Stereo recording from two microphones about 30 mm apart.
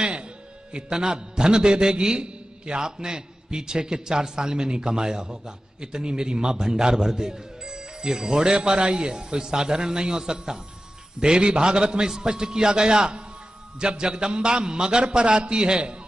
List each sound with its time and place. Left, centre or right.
0.0 s music: right
0.7 s a man's voice: right